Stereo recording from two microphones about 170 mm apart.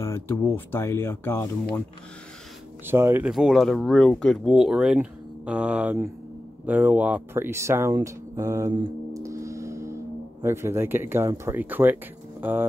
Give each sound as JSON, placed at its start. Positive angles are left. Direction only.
{"t": 0.0, "sound": "speech", "side_deg": 15}
{"t": 2.8, "sound": "speech", "side_deg": -15}
{"t": 9.2, "sound": "music", "side_deg": -20}
{"t": 10.4, "sound": "speech", "side_deg": -15}